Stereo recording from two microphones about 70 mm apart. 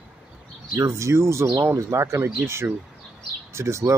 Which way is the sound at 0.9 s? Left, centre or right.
Right.